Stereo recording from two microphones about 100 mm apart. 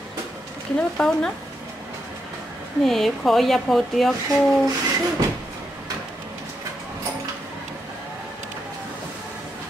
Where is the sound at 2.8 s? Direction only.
5° left (ahead or behind).